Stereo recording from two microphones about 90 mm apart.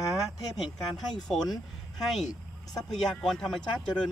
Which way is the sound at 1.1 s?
5° left (ahead or behind).